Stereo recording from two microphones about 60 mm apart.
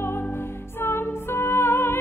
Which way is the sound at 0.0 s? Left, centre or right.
Left.